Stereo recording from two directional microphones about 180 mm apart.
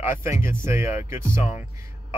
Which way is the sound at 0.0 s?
15° right (ahead or behind).